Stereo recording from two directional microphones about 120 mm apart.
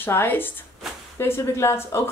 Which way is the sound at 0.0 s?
15° left (ahead or behind).